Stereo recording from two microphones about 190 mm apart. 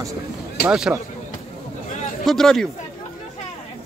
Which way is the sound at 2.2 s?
5° left (ahead or behind).